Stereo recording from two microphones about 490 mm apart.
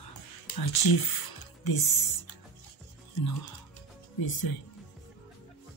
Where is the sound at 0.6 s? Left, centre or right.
Left.